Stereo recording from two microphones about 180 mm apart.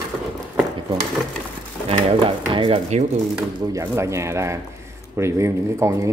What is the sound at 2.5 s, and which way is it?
Speech, 30° right (ahead or behind).